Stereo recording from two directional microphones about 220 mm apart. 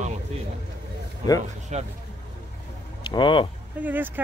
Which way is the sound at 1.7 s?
30° right (ahead or behind).